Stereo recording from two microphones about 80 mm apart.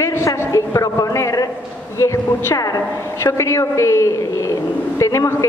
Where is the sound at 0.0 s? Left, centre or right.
Left.